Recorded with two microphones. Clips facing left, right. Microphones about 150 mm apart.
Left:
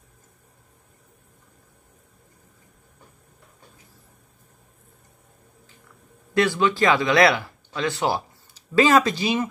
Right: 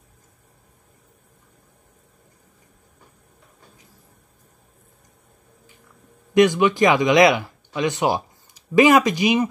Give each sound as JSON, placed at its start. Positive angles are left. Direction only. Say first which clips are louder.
{"t": 6.3, "sound": "speech", "louder": "right 5 dB", "side_deg": -15}